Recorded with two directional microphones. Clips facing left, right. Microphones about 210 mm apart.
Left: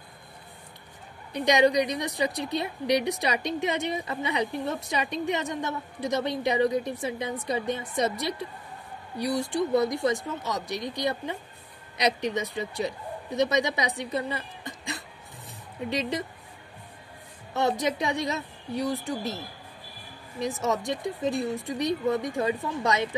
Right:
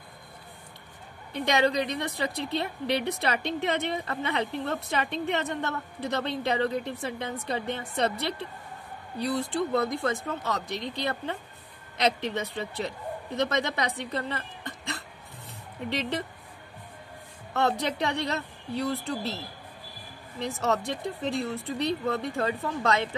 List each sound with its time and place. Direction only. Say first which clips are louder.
1.3 s a woman's voice: left 3 dB; 15° left (ahead or behind)
14.6 s throat clearing: even; 60° right (ahead or behind)
17.6 s a woman's voice: left 1 dB; 15° left (ahead or behind)